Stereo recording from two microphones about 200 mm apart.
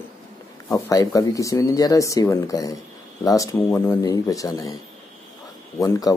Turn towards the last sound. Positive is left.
turn(degrees=15)  # may be behind; listen again after turning